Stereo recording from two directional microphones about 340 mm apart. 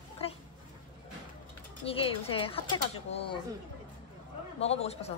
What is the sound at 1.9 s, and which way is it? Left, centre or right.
Speech, centre.